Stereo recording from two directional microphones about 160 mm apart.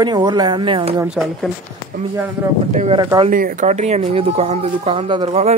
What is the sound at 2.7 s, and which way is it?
Speech, 45° right (ahead or behind).